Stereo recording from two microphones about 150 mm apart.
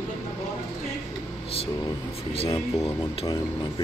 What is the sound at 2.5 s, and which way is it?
Speech, 20° left (ahead or behind).